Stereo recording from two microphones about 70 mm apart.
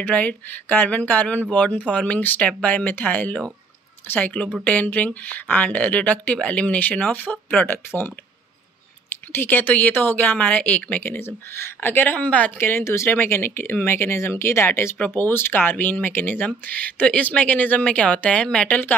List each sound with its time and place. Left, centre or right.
0.0 s speech: left
9.1 s speech: left
12.5 s speech: left; by 18.9 s centre